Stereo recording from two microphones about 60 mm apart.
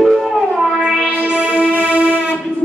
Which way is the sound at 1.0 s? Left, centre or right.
Right.